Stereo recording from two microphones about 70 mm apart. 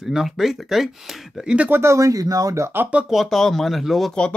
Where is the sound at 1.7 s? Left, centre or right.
Right.